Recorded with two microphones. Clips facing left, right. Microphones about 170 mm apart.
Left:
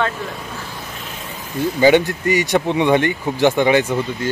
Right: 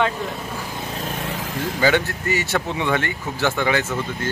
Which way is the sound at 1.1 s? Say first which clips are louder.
Right 5 dB; 85° right.